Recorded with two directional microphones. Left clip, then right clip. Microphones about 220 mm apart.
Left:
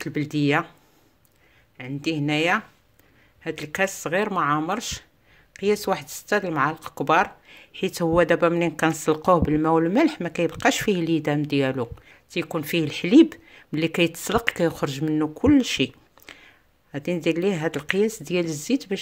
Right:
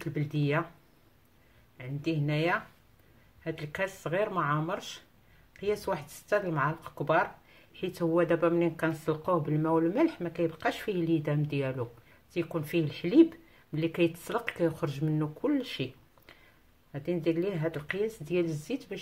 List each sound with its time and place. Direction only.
0.0 s speech: 45° left (ahead or behind)
1.8 s speech: 45° left (ahead or behind)